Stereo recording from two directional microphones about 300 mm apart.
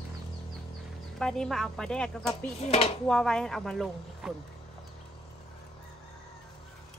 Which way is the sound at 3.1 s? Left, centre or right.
Centre.